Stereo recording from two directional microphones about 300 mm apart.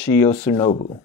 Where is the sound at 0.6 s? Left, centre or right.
Left.